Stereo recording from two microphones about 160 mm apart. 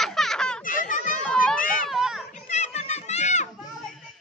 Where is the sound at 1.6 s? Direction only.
60° left (ahead or behind).